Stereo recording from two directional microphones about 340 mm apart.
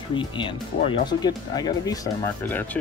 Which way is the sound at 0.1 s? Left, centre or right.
Centre.